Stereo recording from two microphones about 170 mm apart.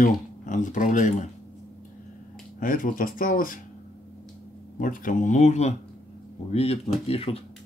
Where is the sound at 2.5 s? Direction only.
55° left (ahead or behind).